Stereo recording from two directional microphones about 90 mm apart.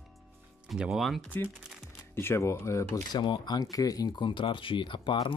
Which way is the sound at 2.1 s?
30° left (ahead or behind).